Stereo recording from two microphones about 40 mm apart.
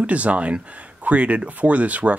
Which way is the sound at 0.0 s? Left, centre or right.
Right.